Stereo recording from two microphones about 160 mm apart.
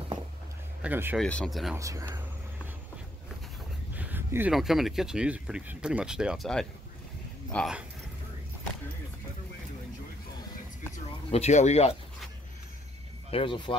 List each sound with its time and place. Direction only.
0.8 s speech: 15° right (ahead or behind)
1.1 s speech: 5° left (ahead or behind)
1.8 s speech: 20° right (ahead or behind)
3.9 s a sound: 10° right (ahead or behind)
4.6 s speech: centre (ahead or behind)
11.3 s speech: 45° left (ahead or behind)
13.3 s speech: 35° left (ahead or behind)